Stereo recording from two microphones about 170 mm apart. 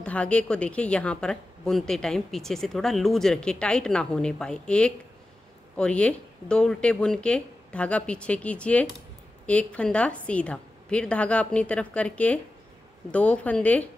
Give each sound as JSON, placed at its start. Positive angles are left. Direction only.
{"t": 0.0, "sound": "a woman's voice", "side_deg": 5}